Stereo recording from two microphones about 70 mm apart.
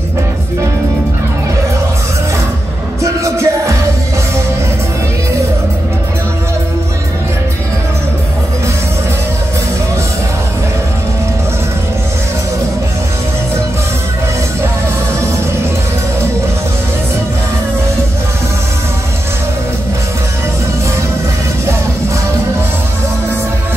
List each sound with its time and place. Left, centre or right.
3.0 s music: right